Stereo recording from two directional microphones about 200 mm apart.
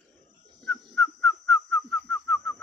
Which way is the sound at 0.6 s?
5° left (ahead or behind).